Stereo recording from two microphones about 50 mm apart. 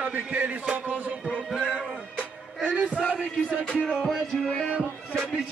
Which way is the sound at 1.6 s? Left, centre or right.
Right.